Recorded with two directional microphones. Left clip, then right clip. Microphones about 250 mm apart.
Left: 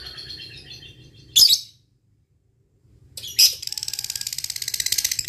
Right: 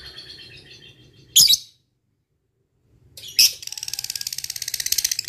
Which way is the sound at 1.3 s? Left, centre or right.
Right.